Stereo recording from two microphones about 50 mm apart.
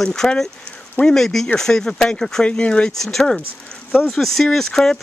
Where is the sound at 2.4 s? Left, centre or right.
Left.